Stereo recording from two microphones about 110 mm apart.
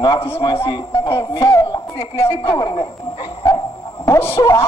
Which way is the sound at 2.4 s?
35° left (ahead or behind).